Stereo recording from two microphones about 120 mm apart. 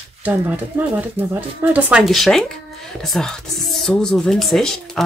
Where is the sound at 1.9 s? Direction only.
Centre (ahead or behind).